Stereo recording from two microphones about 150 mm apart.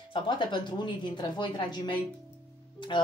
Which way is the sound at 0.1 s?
30° left (ahead or behind).